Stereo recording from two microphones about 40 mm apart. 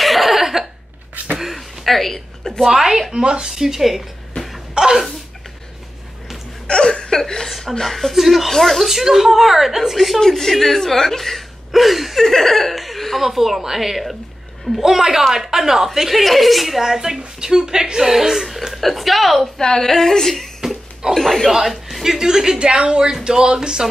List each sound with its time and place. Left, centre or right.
0.0 s a sound: centre
2.7 s speech: centre
3.1 s speech: right
4.7 s a sound: centre
6.7 s speech: centre
19.4 s speech: centre
21.5 s speech: centre
22.6 s speech: right
23.0 s speech: centre